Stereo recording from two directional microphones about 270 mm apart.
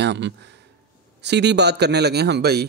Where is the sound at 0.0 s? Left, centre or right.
Right.